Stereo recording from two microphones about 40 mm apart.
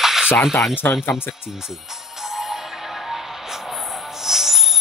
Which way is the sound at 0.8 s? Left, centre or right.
Left.